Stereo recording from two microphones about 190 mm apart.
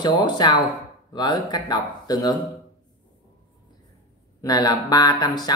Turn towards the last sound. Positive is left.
turn(degrees=20)  # may be behind; listen again after turning